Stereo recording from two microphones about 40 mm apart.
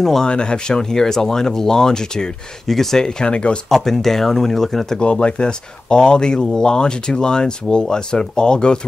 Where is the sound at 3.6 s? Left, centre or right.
Centre.